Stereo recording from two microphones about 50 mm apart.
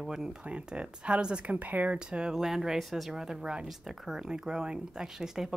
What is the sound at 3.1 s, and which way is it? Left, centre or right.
A woman's voice, centre.